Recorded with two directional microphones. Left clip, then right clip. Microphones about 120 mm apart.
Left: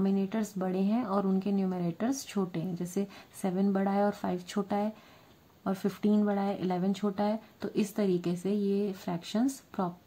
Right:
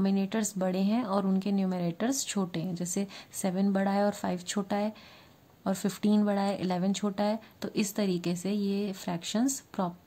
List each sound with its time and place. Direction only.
0.0 s speech: 20° right (ahead or behind)